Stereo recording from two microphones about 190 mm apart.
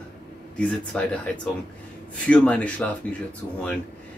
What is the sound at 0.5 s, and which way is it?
Speech, 5° left (ahead or behind).